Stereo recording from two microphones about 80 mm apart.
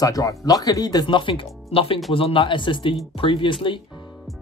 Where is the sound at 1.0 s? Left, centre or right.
Left.